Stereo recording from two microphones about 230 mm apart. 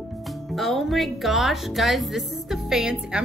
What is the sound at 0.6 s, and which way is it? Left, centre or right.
Speech, centre.